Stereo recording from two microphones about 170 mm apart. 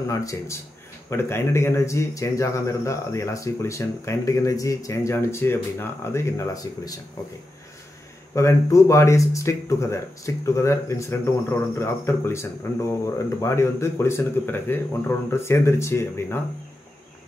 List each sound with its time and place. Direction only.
0.1 s speech: 20° left (ahead or behind)
8.4 s speech: 20° left (ahead or behind)